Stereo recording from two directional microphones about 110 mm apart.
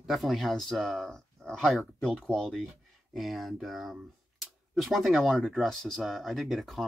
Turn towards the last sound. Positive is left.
turn(degrees=0)  # may be behind; listen again after turning